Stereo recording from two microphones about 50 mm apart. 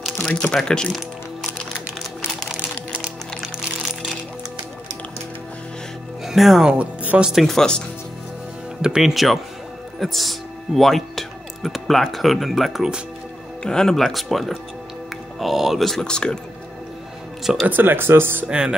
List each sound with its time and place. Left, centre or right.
0.2 s speech: centre
6.2 s speech: centre
6.7 s speech: right
7.2 s speech: centre
7.4 s speech: centre
8.8 s speech: centre
9.1 s speech: centre
13.6 s speech: centre
16.0 s speech: centre
17.6 s speech: right
18.5 s music: right